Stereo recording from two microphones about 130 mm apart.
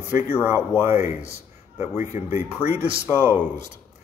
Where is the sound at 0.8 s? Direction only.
20° right (ahead or behind).